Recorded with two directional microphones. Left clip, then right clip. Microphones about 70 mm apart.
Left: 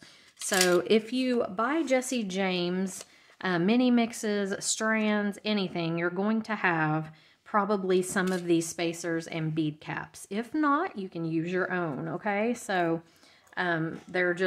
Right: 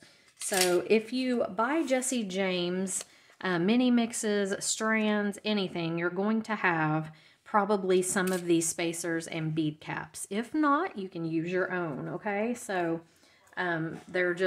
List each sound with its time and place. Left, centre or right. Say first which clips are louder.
0.5 s speech: left 2 dB; left
0.8 s speech: left 1 dB; left
1.4 s a woman's voice: even; centre; by 14.4 s left